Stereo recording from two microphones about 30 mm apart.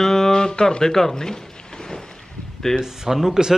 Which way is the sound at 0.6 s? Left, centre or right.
Left.